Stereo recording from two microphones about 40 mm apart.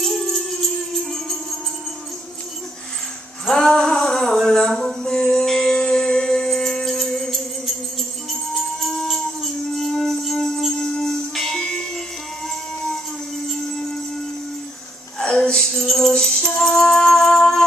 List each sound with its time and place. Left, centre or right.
0.0 s music: centre
3.4 s music: centre
3.7 s a sound: centre
8.3 s music: centre
15.1 s music: centre
15.5 s music: centre